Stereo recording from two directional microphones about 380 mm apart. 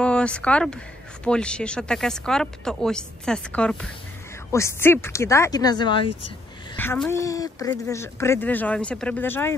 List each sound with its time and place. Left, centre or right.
0.0 s speech: centre